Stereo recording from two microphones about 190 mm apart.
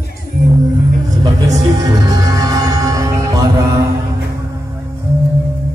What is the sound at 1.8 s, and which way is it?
Music, 20° right (ahead or behind).